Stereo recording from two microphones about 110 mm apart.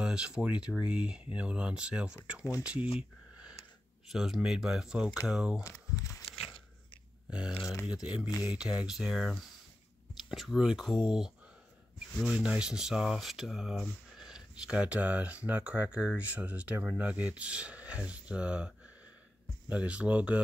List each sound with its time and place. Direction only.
0.0 s speech: 10° right (ahead or behind)
3.0 s a sound: 10° right (ahead or behind)
4.1 s speech: 5° right (ahead or behind)
5.6 s speech: 30° left (ahead or behind)
7.2 s speech: 10° right (ahead or behind)
12.1 s speech: centre (ahead or behind)
19.7 s speech: 10° right (ahead or behind)